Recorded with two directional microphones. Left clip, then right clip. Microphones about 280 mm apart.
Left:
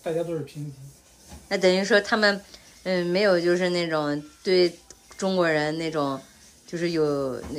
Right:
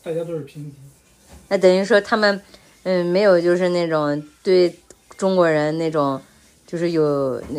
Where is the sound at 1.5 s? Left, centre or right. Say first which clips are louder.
Right 6 dB; centre.